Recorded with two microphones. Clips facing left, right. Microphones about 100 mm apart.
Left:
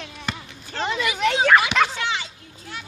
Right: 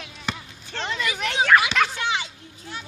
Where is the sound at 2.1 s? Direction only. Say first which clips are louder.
Right 1 dB; 20° right (ahead or behind).